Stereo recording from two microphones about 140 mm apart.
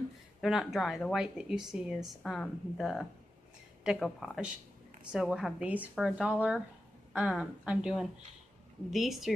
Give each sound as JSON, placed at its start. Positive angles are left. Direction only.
{"t": 0.4, "sound": "a woman's voice", "side_deg": 0}